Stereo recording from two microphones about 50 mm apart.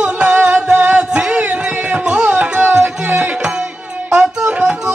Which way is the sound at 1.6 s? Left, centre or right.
Centre.